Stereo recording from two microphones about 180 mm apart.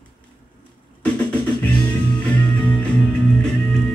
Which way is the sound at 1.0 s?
10° left (ahead or behind).